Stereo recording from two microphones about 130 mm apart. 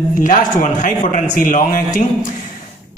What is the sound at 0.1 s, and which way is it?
Speech, 85° left.